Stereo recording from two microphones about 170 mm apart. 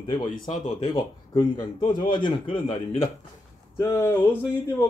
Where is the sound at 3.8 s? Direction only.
15° left (ahead or behind).